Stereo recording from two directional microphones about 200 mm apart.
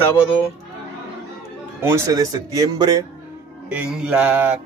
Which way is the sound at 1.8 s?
15° right (ahead or behind).